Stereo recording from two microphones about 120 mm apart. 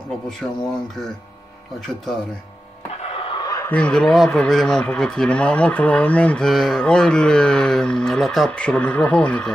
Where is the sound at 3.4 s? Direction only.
30° left (ahead or behind).